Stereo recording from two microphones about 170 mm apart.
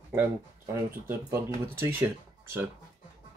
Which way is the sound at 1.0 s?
15° right (ahead or behind).